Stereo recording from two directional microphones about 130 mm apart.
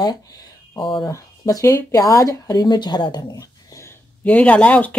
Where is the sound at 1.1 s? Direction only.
25° left (ahead or behind).